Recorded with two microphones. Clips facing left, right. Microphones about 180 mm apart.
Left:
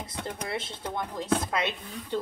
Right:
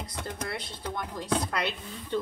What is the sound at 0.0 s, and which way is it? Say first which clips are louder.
Speech: left 1 dB; 20° left (ahead or behind).